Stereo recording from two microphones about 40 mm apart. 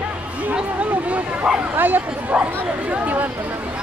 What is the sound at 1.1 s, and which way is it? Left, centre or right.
Bow-wow, right.